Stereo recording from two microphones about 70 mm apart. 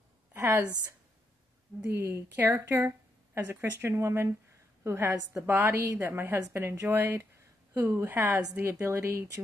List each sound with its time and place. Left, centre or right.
0.3 s a woman's voice: right
1.9 s speech: right